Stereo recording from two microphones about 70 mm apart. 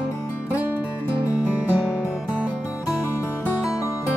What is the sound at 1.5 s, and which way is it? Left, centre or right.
Music, right.